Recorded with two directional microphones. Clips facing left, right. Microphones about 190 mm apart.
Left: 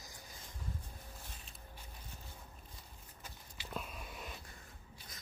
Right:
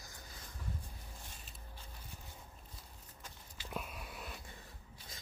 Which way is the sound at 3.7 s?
10° right (ahead or behind).